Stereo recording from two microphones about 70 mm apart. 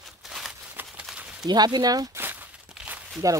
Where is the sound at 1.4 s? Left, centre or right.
Right.